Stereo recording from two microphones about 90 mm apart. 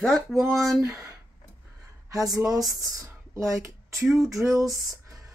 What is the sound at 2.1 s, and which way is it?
Speech, 40° right (ahead or behind).